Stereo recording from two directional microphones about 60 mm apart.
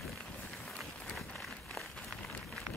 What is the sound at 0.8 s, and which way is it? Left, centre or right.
Run, centre.